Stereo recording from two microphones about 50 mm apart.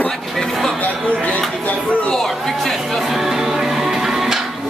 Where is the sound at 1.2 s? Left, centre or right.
Left.